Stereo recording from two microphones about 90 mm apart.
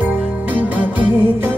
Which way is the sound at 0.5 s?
20° right (ahead or behind).